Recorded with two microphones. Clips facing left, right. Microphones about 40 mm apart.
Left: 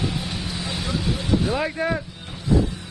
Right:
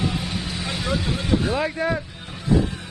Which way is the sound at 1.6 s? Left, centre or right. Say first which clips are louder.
Right 1 dB; centre.